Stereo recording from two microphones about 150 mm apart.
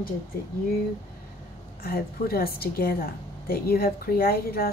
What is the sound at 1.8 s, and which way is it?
A woman's voice, 90° left.